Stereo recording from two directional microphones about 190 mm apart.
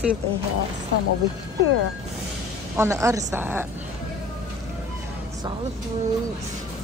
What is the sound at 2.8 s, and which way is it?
Speech, 15° right (ahead or behind).